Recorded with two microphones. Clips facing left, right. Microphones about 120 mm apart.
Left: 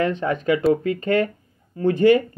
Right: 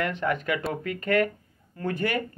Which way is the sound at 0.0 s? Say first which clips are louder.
Left 6 dB; 25° left (ahead or behind).